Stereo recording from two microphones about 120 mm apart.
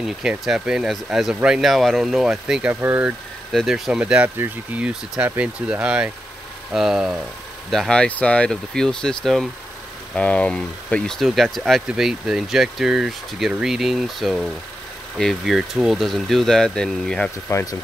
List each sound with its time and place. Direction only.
0.0 s speech: 5° right (ahead or behind)
3.5 s speech: centre (ahead or behind)
17.5 s speech: 25° left (ahead or behind)